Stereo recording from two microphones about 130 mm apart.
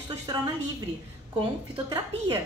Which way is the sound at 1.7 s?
35° right (ahead or behind).